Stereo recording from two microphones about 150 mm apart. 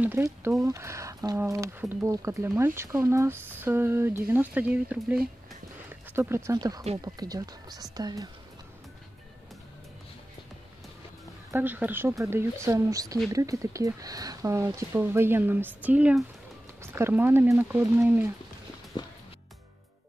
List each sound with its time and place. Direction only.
0.0 s speech: 15° right (ahead or behind)
11.5 s speech: 10° right (ahead or behind)